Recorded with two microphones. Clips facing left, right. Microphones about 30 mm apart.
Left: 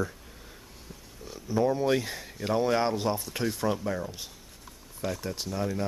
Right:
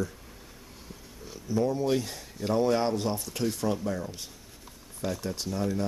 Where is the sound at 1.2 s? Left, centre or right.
Centre.